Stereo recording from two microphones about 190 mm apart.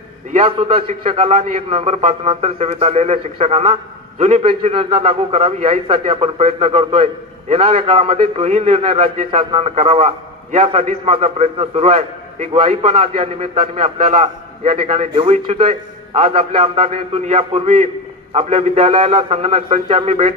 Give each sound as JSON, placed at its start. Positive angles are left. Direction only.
{"t": 0.3, "sound": "a man's voice", "side_deg": -30}